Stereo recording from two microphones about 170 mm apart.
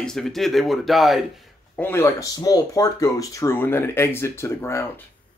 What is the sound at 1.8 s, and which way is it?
Speech, 15° left (ahead or behind).